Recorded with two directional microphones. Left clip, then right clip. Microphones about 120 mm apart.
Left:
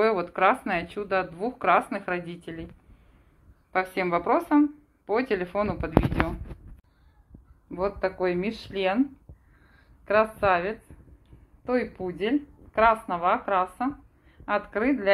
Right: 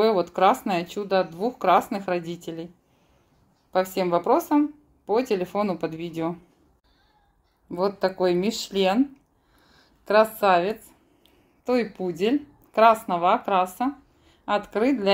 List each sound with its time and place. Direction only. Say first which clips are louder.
0.2 s speech: right 3 dB; 65° right (ahead or behind)
3.7 s speech: right 3 dB; 45° right (ahead or behind); by 6.3 s 70° right (ahead or behind)
7.7 s a woman's voice: right 3 dB; 80° right
14.4 s a woman's voice: right 3 dB; 75° right (ahead or behind)